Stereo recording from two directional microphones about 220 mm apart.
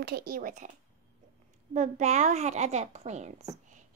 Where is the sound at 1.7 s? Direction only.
30° right (ahead or behind).